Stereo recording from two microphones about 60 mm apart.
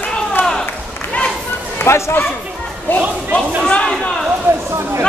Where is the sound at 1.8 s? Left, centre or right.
Left.